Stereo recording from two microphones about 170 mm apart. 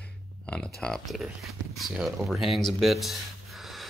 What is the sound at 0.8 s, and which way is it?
Speech, centre (ahead or behind).